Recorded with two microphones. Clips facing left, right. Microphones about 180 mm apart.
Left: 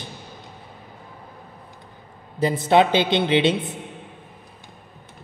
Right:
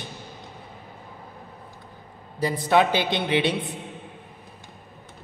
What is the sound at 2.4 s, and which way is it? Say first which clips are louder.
A man's voice: left 3 dB; 25° left (ahead or behind).